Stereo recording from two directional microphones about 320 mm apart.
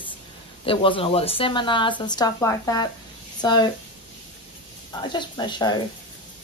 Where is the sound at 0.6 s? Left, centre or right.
Centre.